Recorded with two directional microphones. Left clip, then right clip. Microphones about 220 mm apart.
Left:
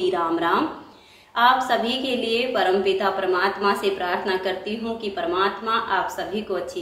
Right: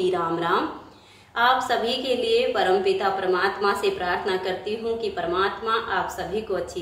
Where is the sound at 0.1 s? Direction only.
Centre (ahead or behind).